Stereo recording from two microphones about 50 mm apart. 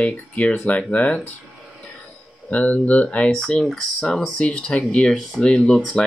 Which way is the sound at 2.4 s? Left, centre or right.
Left.